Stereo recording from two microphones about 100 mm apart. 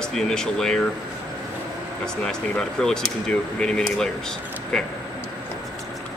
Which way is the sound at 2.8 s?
10° left (ahead or behind).